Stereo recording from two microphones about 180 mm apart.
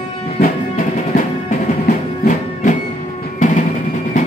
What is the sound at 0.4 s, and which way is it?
Music, 50° left (ahead or behind).